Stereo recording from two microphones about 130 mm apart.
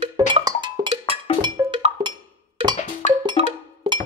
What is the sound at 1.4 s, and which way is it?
Wood block, 40° right (ahead or behind).